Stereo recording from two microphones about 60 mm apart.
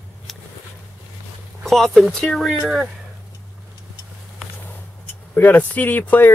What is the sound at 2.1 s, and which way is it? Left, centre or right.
Speech, centre.